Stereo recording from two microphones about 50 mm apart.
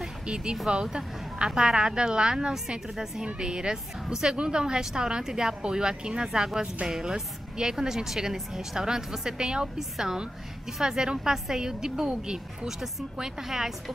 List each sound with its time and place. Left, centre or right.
0.9 s a woman's voice: centre